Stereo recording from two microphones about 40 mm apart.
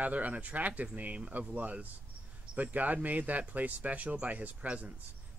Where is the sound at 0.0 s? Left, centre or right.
Right.